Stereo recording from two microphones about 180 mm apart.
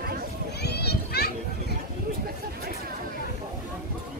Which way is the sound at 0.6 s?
65° left (ahead or behind).